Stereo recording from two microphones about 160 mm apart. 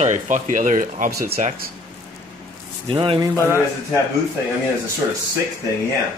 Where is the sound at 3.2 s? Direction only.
20° right (ahead or behind).